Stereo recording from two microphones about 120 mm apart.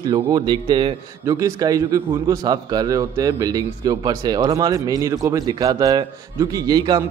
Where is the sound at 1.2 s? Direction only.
30° right (ahead or behind).